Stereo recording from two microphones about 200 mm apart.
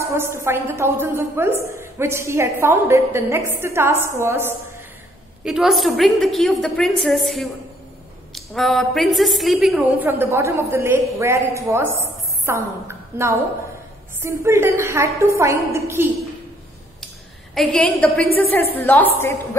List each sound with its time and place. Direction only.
0.0 s a woman's voice: 15° right (ahead or behind)
17.6 s a woman's voice: 5° left (ahead or behind)